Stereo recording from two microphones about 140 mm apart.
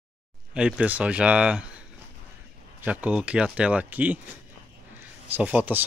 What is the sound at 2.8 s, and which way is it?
Speech, 10° right (ahead or behind).